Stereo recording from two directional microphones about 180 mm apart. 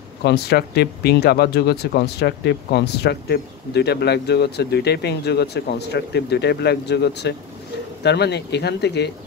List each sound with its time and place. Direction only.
0.2 s speech: 65° left (ahead or behind)